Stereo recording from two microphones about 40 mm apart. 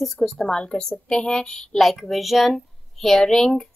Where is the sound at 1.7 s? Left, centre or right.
Centre.